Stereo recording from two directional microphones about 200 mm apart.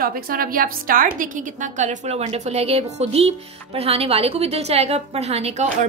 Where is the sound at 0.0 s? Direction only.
45° right (ahead or behind).